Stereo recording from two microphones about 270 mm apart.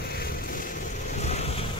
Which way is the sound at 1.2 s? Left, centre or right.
Left.